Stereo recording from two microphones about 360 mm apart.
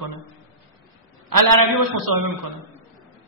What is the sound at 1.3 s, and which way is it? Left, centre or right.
A man's voice, right.